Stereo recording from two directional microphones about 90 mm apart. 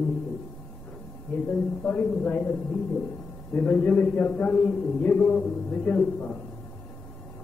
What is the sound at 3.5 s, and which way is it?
A man's voice, 20° left (ahead or behind).